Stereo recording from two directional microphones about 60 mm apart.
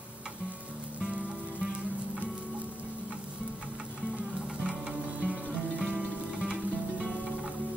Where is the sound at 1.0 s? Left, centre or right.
Centre.